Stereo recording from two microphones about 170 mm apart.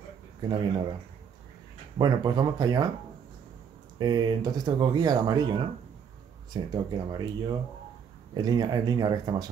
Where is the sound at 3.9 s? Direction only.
25° right (ahead or behind).